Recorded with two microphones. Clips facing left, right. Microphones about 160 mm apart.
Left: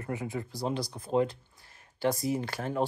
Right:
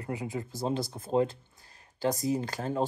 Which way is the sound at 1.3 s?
40° right (ahead or behind).